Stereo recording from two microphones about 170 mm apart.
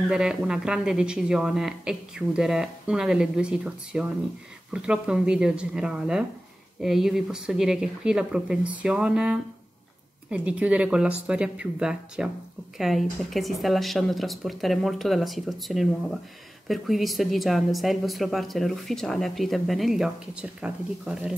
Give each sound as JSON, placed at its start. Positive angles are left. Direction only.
{"t": 0.1, "sound": "a woman's voice", "side_deg": -5}